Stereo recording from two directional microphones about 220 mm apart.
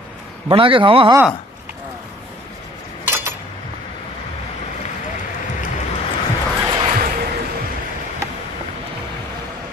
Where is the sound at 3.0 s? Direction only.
10° right (ahead or behind).